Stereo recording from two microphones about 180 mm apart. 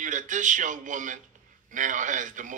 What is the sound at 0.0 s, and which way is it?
A man's voice, 45° right (ahead or behind).